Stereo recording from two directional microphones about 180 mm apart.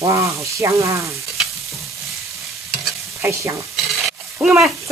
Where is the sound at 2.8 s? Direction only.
15° right (ahead or behind).